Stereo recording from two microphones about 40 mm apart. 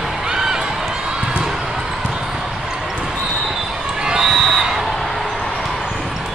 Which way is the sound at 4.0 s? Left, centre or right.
Centre.